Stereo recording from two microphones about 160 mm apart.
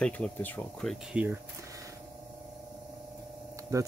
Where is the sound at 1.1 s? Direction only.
10° right (ahead or behind).